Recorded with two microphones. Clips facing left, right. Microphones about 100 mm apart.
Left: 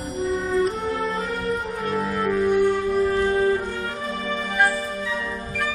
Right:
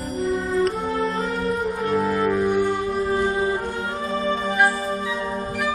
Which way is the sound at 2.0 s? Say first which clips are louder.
Right 1 dB; 10° right (ahead or behind).